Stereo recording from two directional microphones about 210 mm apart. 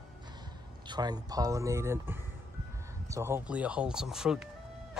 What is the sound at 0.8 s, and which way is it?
Speech, 20° right (ahead or behind).